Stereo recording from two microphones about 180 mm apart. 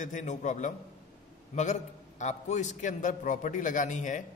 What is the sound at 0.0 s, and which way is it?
A man's voice, 45° left (ahead or behind).